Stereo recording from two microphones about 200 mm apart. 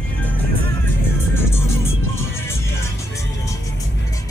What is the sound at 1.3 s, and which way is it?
Music, 10° left (ahead or behind).